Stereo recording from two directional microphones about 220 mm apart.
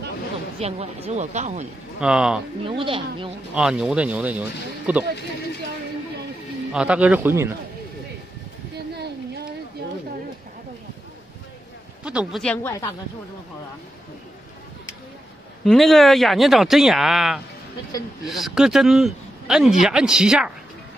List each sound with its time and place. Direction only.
0.6 s speech: 30° right (ahead or behind)
2.0 s speech: 5° right (ahead or behind)
2.6 s speech: 25° right (ahead or behind)
3.5 s speech: 5° right (ahead or behind)
6.7 s speech: 5° right (ahead or behind)
12.0 s speech: 5° right (ahead or behind)
15.6 s speech: centre (ahead or behind)